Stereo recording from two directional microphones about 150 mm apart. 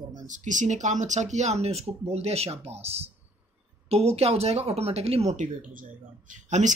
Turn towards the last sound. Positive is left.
turn(degrees=-55)  # may be behind; listen again after turning